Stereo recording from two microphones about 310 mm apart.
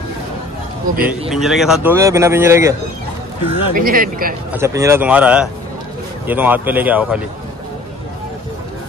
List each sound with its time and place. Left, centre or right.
1.3 s speech: centre
3.4 s speech: right
4.5 s speech: centre